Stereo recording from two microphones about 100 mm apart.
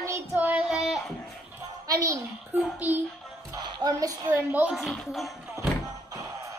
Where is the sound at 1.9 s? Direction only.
35° right (ahead or behind).